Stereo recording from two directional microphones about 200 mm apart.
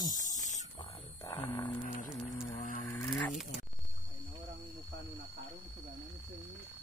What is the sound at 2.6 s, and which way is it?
Vehicle, 45° left (ahead or behind).